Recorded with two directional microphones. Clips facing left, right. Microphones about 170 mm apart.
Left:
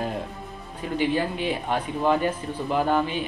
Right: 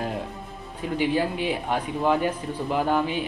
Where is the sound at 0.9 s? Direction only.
10° right (ahead or behind).